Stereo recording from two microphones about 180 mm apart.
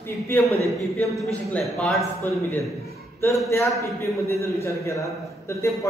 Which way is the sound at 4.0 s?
15° left (ahead or behind).